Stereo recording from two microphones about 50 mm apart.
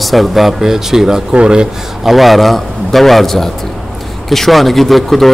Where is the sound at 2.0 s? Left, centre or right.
Centre.